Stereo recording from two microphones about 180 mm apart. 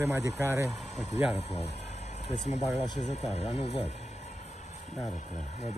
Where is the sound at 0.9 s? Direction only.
40° left (ahead or behind).